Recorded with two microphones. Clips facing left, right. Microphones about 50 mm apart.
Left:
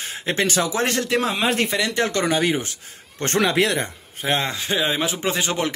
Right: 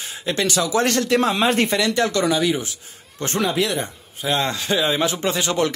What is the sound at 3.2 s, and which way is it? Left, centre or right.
Speech, left.